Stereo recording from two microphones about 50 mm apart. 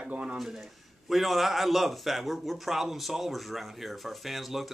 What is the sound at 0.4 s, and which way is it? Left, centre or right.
A man's voice, centre.